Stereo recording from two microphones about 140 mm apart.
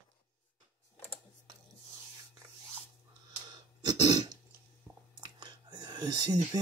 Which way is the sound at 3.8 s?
30° right (ahead or behind).